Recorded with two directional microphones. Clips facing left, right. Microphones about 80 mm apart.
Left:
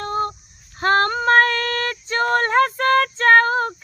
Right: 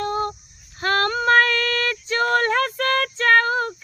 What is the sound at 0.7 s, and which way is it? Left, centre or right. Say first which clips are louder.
Female singing: left 3 dB; left.